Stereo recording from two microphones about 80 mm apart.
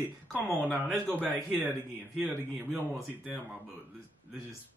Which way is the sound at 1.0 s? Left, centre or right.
Right.